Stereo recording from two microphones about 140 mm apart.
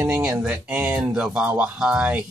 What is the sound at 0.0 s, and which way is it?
Speech, 15° right (ahead or behind).